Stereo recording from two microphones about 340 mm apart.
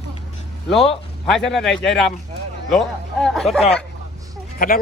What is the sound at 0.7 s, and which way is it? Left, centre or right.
A man's voice, centre.